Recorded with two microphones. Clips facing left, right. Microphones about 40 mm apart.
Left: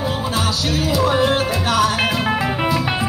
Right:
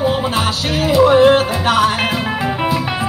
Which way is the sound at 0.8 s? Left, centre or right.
Right.